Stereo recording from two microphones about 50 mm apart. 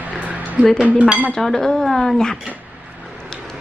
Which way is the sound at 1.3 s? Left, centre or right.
Centre.